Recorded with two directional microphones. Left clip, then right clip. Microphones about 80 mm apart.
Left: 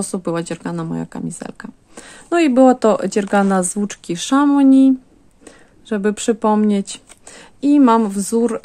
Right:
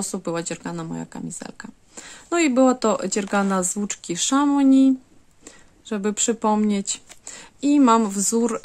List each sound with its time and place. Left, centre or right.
0.0 s speech: left
2.0 s speech: left; by 8.5 s centre